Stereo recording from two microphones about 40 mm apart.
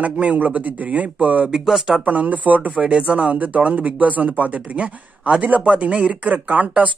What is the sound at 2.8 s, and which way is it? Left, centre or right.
A man's voice, right.